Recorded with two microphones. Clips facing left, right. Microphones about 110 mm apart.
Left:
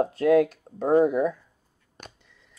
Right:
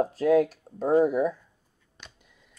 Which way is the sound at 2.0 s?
50° left (ahead or behind).